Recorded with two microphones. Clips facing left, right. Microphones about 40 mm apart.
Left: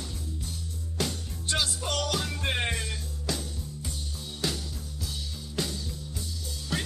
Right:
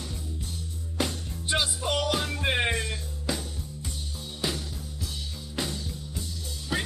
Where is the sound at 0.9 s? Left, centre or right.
Centre.